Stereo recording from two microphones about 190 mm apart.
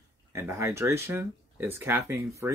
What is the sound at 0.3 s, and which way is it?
Speech, 15° right (ahead or behind).